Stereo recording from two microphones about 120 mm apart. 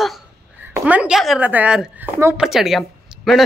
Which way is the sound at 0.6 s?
10° right (ahead or behind).